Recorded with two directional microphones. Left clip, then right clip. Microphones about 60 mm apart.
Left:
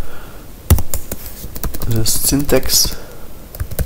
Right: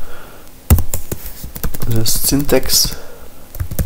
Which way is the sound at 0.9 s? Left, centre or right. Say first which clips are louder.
Right 1 dB; left.